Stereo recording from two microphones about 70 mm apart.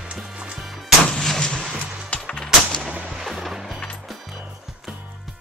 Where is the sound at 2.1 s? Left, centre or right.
Centre.